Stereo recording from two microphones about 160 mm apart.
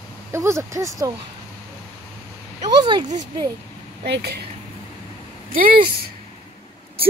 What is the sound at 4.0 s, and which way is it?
Speech, 90° right.